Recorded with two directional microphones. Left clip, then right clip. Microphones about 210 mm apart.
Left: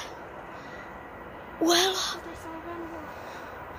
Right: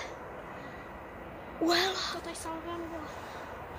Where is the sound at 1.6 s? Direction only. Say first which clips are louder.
Left 5 dB; 20° left (ahead or behind).